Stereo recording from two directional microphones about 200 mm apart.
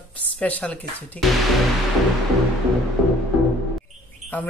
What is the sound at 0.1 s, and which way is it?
Speech, 10° left (ahead or behind).